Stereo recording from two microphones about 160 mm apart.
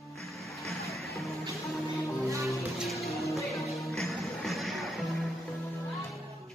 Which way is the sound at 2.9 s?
Centre (ahead or behind).